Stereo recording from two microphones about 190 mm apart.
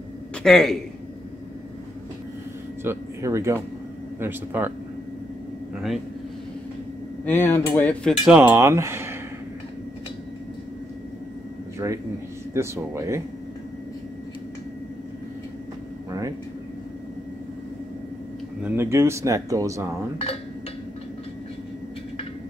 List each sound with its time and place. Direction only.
0.4 s a man's voice: centre (ahead or behind)
2.8 s speech: 15° right (ahead or behind)
7.2 s speech: 10° left (ahead or behind)
8.4 s speech: 10° right (ahead or behind)
11.8 s speech: 15° right (ahead or behind)
16.1 s a sound: 15° right (ahead or behind)
18.6 s speech: 10° right (ahead or behind)